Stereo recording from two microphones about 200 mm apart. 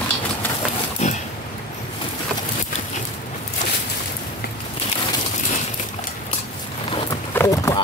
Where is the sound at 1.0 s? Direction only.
35° left (ahead or behind).